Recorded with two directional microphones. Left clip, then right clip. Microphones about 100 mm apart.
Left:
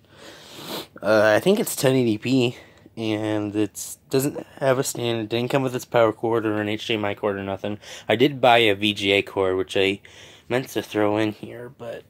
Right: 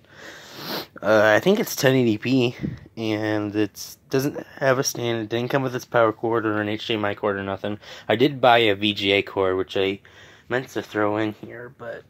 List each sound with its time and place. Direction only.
0.6 s speech: 5° right (ahead or behind)
9.7 s speech: 25° left (ahead or behind)
10.5 s speech: 35° left (ahead or behind)